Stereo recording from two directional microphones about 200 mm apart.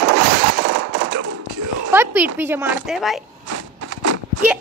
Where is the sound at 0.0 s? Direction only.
90° right.